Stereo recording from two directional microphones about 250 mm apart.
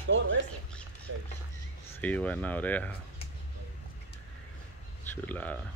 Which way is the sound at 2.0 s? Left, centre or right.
Centre.